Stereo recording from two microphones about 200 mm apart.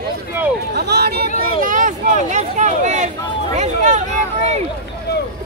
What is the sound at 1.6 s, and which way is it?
Speech, 40° right (ahead or behind).